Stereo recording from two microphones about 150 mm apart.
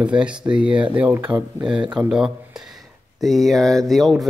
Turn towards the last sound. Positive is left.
turn(degrees=0)  # may be behind; listen again after turning